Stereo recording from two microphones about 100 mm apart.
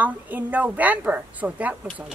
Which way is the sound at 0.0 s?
15° right (ahead or behind).